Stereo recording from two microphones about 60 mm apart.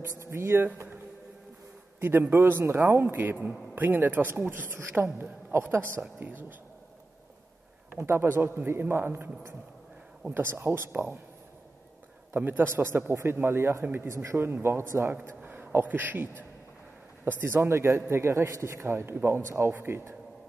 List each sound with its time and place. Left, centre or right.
0.2 s a man's voice: right
2.0 s speech: right
8.0 s speech: right
10.3 s speech: right
12.4 s a man's voice: right
14.4 s a man's voice: right